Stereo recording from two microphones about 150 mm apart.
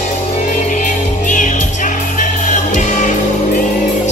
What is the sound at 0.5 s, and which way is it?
Music, 55° left (ahead or behind).